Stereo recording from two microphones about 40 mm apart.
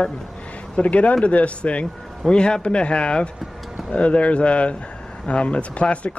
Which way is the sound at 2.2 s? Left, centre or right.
Left.